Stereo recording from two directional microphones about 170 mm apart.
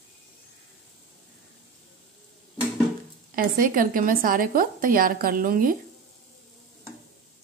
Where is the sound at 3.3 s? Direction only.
55° right (ahead or behind).